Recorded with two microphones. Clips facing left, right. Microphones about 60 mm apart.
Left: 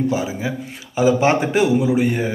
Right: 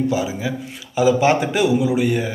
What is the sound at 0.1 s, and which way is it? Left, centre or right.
A man's voice, left.